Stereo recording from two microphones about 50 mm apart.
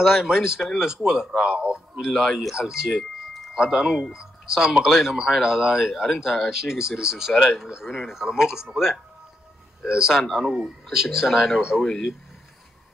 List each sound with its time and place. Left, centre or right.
0.0 s speech: centre
1.4 s a man's voice: right
2.1 s speech: centre
2.9 s chime: centre
3.5 s speech: centre
11.8 s speech: centre